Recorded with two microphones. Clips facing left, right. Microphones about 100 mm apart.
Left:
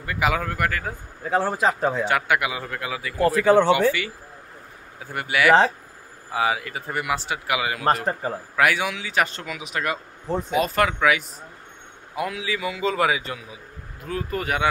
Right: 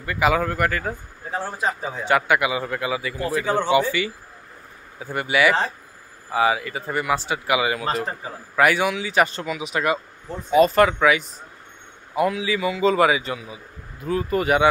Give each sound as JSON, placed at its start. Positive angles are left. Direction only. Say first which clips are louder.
{"t": 0.0, "sound": "speech", "louder": "right 3 dB", "side_deg": 0}
{"t": 1.3, "sound": "a man's voice", "louder": "left 4 dB", "side_deg": 85}
{"t": 2.0, "sound": "speech", "louder": "right 3 dB", "side_deg": 0}
{"t": 3.2, "sound": "speech", "louder": "left 8 dB", "side_deg": 70}
{"t": 4.9, "sound": "speech", "louder": "right 3 dB", "side_deg": 0}
{"t": 7.8, "sound": "a man's voice", "louder": "left 4 dB", "side_deg": 60}
{"t": 8.5, "sound": "speech", "louder": "right 4 dB", "side_deg": 0}